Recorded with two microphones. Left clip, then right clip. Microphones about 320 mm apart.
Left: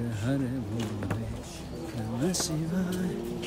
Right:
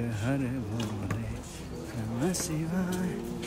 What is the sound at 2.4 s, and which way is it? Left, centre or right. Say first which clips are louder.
Music: left 1 dB; centre.